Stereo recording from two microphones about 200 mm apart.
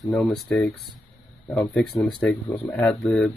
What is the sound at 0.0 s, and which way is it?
Speech, centre (ahead or behind).